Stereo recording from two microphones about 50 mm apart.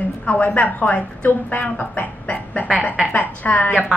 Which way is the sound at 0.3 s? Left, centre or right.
Left.